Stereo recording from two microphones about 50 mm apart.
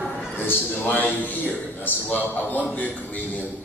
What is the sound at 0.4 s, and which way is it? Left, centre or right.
A man's voice, left.